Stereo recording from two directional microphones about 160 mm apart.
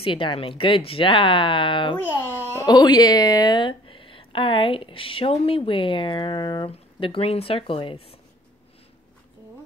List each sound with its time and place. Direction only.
0.0 s speech: 35° left (ahead or behind)
2.1 s speech: 15° left (ahead or behind); by 8.2 s 35° left (ahead or behind)